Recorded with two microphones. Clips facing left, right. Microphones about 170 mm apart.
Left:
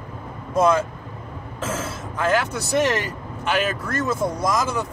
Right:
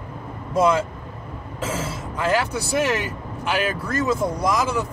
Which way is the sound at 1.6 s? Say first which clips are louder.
Right 1 dB; 10° right (ahead or behind).